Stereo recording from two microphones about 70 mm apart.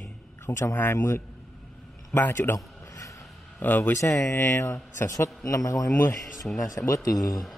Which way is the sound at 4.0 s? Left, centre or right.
Left.